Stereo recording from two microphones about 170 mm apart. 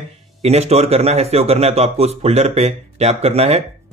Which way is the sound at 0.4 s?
40° right (ahead or behind).